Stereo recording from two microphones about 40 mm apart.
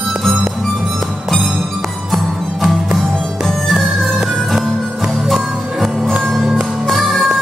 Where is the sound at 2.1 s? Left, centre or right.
Centre.